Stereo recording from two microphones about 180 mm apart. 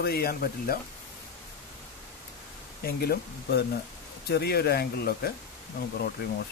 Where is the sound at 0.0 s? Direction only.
55° left (ahead or behind).